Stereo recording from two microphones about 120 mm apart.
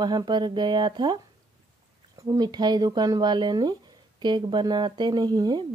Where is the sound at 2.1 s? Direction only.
30° right (ahead or behind).